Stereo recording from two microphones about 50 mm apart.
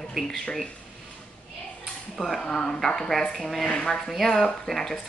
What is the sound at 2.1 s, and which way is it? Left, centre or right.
Speech, centre.